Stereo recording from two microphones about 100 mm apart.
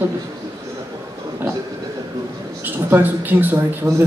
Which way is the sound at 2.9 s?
20° right (ahead or behind).